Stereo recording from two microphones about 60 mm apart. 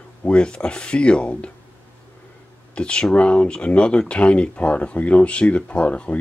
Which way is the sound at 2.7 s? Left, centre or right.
Centre.